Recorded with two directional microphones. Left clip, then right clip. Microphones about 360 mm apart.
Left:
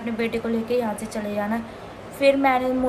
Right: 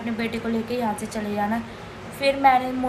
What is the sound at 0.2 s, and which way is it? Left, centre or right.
A woman's voice, centre.